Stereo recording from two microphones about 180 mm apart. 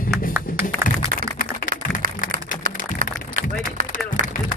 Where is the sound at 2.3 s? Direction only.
50° right (ahead or behind).